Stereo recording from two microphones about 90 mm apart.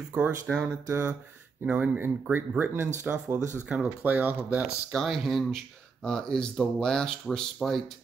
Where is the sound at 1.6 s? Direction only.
20° right (ahead or behind).